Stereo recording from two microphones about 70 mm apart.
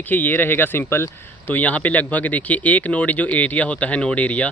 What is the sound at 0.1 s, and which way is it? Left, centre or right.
Speech, left.